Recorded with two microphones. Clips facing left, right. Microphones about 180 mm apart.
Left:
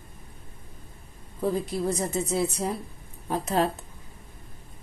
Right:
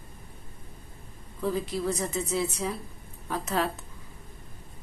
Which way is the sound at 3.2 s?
35° left (ahead or behind).